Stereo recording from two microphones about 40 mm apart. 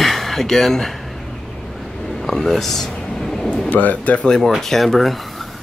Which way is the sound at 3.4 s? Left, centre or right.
Left.